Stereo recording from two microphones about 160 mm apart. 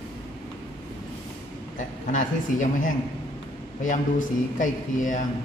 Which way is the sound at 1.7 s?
55° left (ahead or behind).